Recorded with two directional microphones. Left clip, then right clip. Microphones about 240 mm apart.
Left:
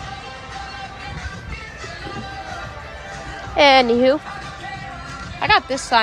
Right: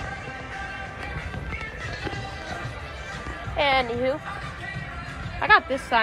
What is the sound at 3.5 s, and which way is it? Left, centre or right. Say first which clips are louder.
Speech: left 10 dB; left.